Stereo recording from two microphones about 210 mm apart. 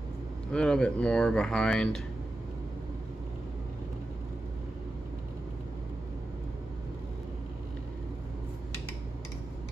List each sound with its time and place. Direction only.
0.5 s speech: 5° left (ahead or behind)